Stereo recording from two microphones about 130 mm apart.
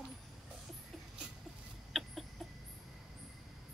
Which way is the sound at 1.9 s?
Centre (ahead or behind).